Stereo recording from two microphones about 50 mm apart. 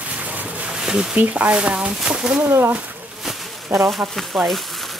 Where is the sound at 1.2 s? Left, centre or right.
Right.